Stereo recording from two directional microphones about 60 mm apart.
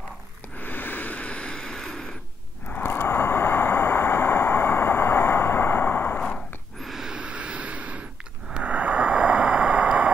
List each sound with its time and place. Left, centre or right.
0.6 s vehicle: left; by 2.0 s centre
2.7 s vehicle: left
6.2 s a sound: centre
6.9 s gasp: centre
7.2 s vehicle: centre
8.5 s a sound: right